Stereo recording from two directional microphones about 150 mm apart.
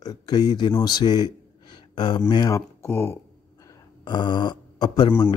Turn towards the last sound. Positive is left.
turn(degrees=30)  # may be behind; listen again after turning